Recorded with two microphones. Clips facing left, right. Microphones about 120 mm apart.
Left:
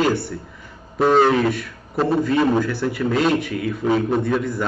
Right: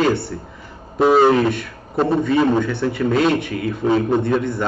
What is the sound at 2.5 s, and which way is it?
A man's voice, 5° left (ahead or behind).